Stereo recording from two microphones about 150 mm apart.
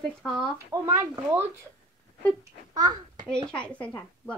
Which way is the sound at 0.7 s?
20° right (ahead or behind).